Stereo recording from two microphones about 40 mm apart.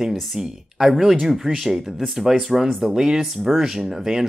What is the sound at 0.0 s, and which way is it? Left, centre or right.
Speech, centre.